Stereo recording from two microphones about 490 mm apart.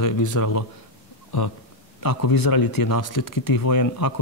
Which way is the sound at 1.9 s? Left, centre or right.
Left.